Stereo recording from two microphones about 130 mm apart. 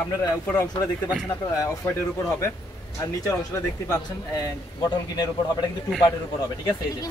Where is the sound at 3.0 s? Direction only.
30° left (ahead or behind).